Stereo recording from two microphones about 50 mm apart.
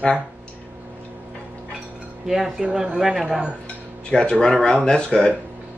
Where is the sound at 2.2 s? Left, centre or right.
Centre.